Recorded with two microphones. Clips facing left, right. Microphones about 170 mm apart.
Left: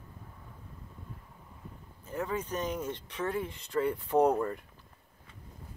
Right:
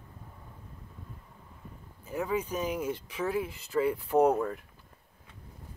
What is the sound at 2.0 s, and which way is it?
Speech, 10° right (ahead or behind).